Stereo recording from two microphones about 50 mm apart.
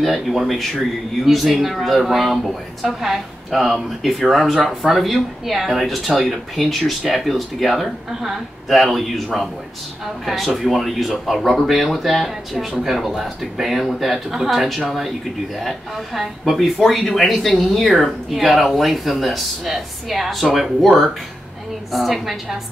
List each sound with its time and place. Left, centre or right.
0.0 s speech: centre